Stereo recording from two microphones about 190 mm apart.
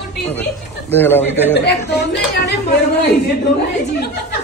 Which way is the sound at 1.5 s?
60° left (ahead or behind).